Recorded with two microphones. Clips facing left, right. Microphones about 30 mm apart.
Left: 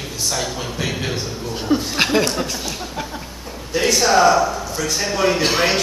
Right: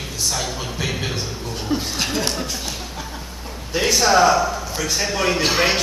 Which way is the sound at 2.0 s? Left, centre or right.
Left.